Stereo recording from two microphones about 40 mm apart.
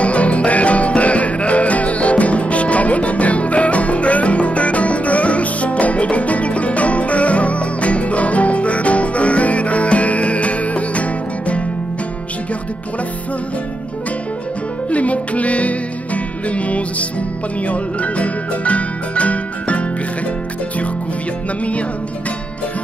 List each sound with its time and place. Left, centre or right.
0.0 s music: left
14.9 s music: left